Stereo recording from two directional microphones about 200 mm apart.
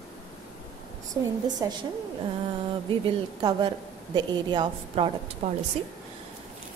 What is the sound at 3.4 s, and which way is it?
Speech, 20° right (ahead or behind).